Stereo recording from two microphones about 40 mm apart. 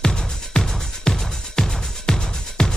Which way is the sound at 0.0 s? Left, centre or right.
Centre.